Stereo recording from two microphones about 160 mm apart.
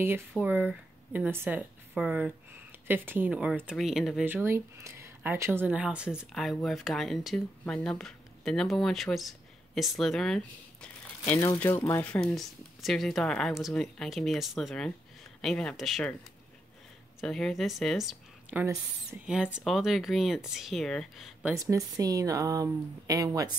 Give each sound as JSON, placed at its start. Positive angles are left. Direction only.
{"t": 0.4, "sound": "speech", "side_deg": -10}
{"t": 4.2, "sound": "speech", "side_deg": -15}
{"t": 11.3, "sound": "speech", "side_deg": 15}
{"t": 17.2, "sound": "speech", "side_deg": 0}
{"t": 21.5, "sound": "speech", "side_deg": -20}